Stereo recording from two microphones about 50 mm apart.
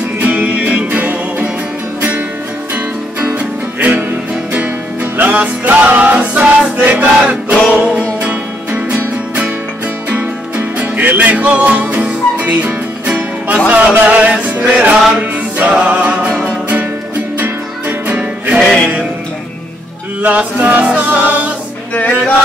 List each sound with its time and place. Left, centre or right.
0.2 s music: right
3.3 s music: right
5.1 s music: right
10.0 s music: right
17.4 s music: right
18.6 s music: centre
20.2 s music: right